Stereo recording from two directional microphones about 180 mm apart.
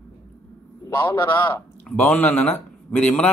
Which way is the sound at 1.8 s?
5° left (ahead or behind).